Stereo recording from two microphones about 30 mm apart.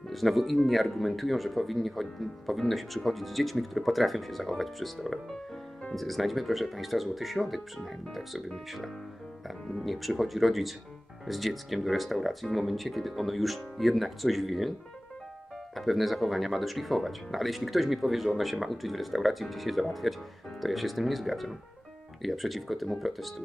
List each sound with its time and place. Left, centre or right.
0.1 s speech: centre
9.8 s speech: centre
15.7 s speech: centre